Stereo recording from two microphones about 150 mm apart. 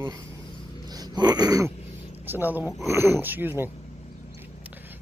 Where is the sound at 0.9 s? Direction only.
25° right (ahead or behind).